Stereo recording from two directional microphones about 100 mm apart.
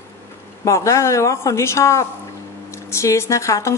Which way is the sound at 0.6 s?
30° left (ahead or behind).